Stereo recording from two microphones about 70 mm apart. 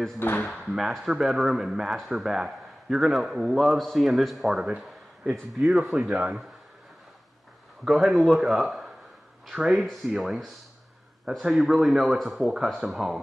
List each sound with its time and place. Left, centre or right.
0.2 s speech: left
0.7 s a man's voice: centre
4.6 s a sound: centre
5.6 s a man's voice: centre
6.0 s speech: centre
7.8 s a man's voice: centre